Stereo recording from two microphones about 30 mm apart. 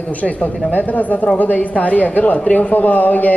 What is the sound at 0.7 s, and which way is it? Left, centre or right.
Speech, left.